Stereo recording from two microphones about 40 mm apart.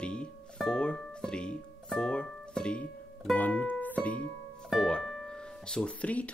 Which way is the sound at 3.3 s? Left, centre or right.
Left.